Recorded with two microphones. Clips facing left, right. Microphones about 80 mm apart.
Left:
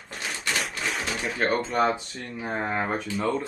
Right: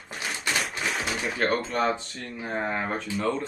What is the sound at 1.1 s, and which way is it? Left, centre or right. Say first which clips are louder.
Speech: left 1 dB; centre.